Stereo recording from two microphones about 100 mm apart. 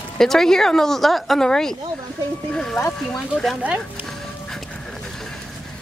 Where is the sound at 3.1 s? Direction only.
5° left (ahead or behind).